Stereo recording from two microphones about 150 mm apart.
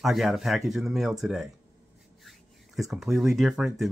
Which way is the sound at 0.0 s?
Centre (ahead or behind).